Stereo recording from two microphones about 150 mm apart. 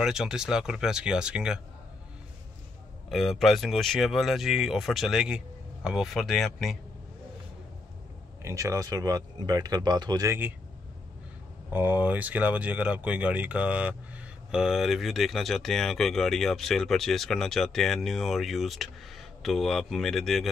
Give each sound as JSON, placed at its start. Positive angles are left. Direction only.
{"t": 0.0, "sound": "speech", "side_deg": -5}
{"t": 3.1, "sound": "speech", "side_deg": 0}
{"t": 8.4, "sound": "speech", "side_deg": -20}
{"t": 11.7, "sound": "speech", "side_deg": -10}